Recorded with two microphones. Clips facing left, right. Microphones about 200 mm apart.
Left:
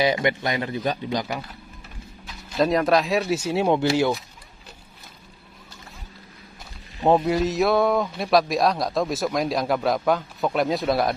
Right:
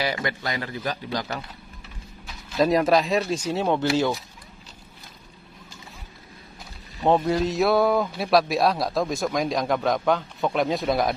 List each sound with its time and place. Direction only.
0.0 s a man's voice: 20° left (ahead or behind)
2.2 s speech: centre (ahead or behind)
7.1 s speech: 5° left (ahead or behind)